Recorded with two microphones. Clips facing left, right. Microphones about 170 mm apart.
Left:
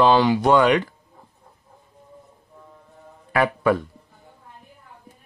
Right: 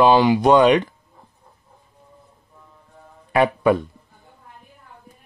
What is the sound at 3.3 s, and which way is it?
Speech, 20° right (ahead or behind).